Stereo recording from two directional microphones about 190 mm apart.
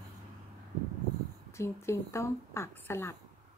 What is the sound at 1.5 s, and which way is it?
A woman's voice, 15° left (ahead or behind).